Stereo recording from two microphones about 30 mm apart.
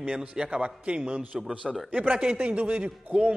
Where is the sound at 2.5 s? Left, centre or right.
Right.